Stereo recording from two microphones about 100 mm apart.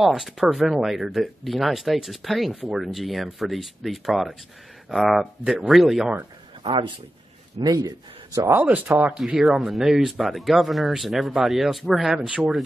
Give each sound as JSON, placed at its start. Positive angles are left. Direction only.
{"t": 0.0, "sound": "speech", "side_deg": 0}
{"t": 6.6, "sound": "speech", "side_deg": -55}
{"t": 7.5, "sound": "speech", "side_deg": -40}
{"t": 8.5, "sound": "speech", "side_deg": -15}
{"t": 8.9, "sound": "speech", "side_deg": -5}